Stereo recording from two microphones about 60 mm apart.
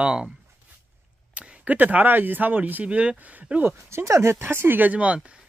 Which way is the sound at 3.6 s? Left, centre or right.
Right.